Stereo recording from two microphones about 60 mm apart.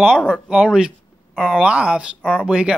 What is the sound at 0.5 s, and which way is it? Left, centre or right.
Speech, centre.